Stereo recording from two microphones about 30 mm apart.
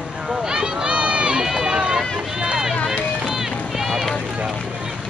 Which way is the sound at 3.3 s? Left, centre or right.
Centre.